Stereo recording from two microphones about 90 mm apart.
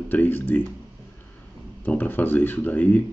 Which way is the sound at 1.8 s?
20° left (ahead or behind).